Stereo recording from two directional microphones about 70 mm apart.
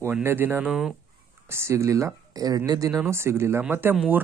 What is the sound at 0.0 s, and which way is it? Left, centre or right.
Speech, right.